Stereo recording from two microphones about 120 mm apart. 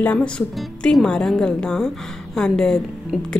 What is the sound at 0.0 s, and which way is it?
Speech, 10° left (ahead or behind).